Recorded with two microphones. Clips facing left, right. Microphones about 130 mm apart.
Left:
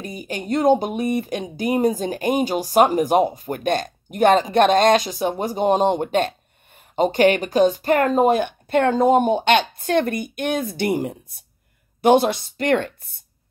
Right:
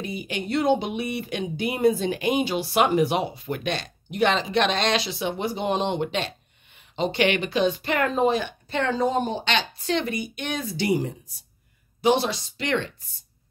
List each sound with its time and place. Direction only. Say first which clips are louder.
0.0 s speech: left 1 dB; 45° left (ahead or behind)